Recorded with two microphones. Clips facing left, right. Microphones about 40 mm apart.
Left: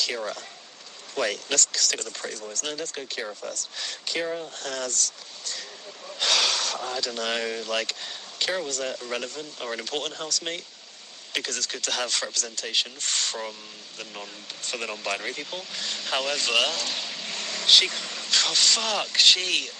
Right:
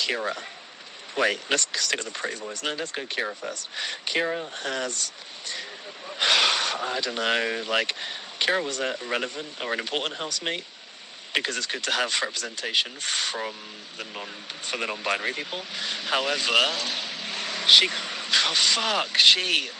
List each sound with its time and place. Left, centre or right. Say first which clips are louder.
0.0 s speech: right 2 dB; right